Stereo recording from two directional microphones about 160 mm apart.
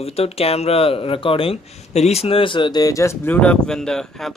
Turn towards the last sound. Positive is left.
turn(degrees=5)  # may be behind; listen again after turning